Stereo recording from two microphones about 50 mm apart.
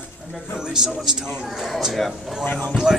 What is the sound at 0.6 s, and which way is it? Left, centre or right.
A man's voice, centre.